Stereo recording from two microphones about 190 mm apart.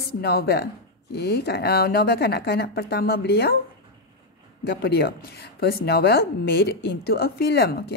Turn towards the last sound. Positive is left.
turn(degrees=55)  # may be behind; listen again after turning